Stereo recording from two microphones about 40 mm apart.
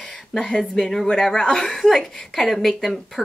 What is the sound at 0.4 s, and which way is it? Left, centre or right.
A woman's voice, centre.